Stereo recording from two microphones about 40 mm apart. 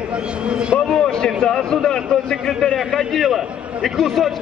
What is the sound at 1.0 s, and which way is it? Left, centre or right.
A man's voice, centre.